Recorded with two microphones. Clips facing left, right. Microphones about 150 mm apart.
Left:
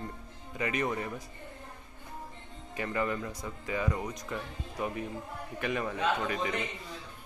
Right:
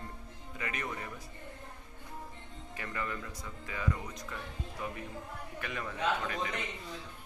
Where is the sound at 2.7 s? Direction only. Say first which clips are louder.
Left 7 dB; 20° left (ahead or behind).